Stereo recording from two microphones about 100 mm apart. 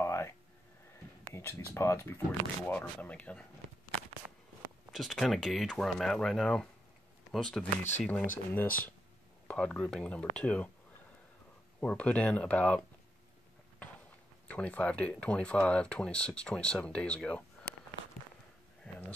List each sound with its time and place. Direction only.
0.0 s a sound: 30° left (ahead or behind)
1.3 s speech: 25° left (ahead or behind)
2.6 s speech: 10° left (ahead or behind)
4.9 s speech: centre (ahead or behind)
8.5 s speech: 20° left (ahead or behind)
11.8 s speech: 15° left (ahead or behind)
14.5 s speech: 15° left (ahead or behind)
17.6 s walk: 5° left (ahead or behind)